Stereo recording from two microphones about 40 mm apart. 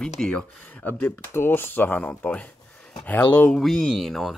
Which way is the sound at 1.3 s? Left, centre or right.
Left.